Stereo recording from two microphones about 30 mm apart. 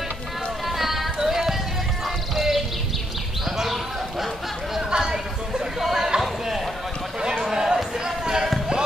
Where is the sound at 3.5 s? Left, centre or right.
Centre.